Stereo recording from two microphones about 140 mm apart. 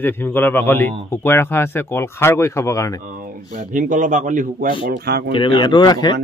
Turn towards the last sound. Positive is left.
turn(degrees=30)  # may be behind; listen again after turning